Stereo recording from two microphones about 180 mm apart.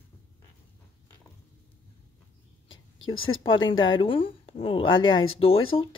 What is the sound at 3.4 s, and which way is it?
A woman's voice, 25° left (ahead or behind).